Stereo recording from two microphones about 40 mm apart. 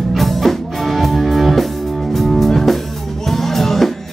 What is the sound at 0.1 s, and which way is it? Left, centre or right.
Music, centre.